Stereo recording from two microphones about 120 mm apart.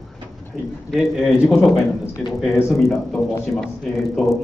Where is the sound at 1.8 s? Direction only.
25° left (ahead or behind).